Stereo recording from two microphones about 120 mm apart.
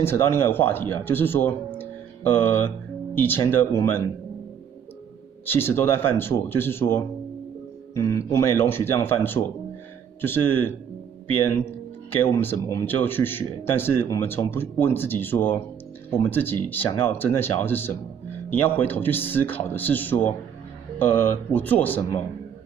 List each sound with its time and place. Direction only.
0.0 s speech: 20° left (ahead or behind)
1.8 s music: 15° left (ahead or behind)
3.2 s speech: 20° left (ahead or behind)
5.5 s speech: 20° left (ahead or behind)
12.4 s speech: 20° left (ahead or behind)